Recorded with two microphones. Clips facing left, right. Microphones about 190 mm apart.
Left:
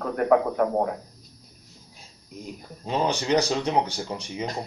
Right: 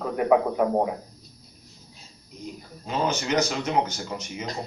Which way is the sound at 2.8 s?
35° left (ahead or behind).